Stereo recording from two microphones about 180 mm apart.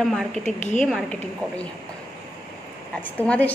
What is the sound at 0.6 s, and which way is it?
Speech, 45° left (ahead or behind).